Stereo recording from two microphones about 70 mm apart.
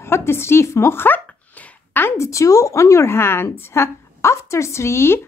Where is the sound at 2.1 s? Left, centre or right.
Left.